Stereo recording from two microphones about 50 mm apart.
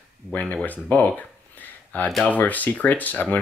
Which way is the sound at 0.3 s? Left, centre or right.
Left.